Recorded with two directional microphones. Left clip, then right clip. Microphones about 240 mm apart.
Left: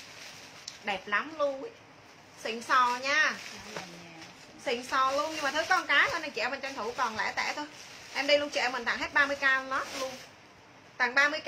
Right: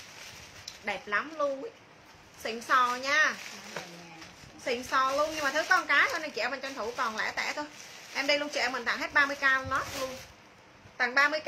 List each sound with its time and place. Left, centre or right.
0.8 s speech: centre
4.6 s speech: centre
11.0 s speech: centre